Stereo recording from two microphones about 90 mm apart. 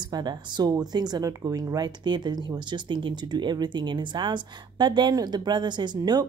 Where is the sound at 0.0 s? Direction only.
50° right (ahead or behind).